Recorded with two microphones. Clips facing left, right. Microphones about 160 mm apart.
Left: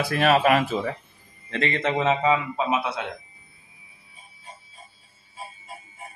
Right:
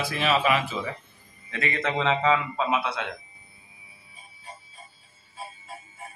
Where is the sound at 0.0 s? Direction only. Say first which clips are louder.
Left 5 dB; 50° left (ahead or behind).